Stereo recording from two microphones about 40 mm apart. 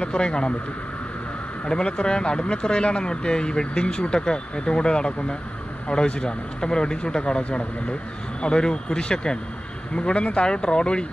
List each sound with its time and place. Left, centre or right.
0.0 s speech: left
1.7 s speech: left